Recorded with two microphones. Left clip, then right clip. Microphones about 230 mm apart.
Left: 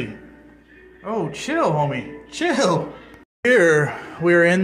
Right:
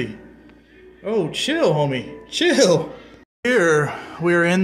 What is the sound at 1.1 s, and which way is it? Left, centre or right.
Speech, right.